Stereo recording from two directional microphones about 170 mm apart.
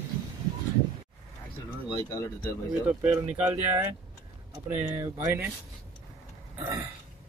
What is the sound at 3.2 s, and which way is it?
Speech, 10° right (ahead or behind).